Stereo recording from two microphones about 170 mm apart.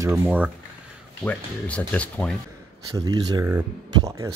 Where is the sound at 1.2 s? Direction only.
10° left (ahead or behind).